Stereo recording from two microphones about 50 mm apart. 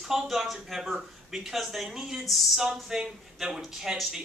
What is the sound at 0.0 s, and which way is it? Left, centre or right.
Speech, centre.